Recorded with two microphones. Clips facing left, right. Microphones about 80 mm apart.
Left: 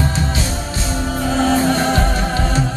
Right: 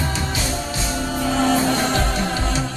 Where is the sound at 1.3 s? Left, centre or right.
Left.